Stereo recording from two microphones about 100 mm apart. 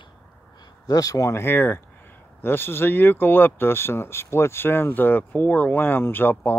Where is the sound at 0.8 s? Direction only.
35° left (ahead or behind).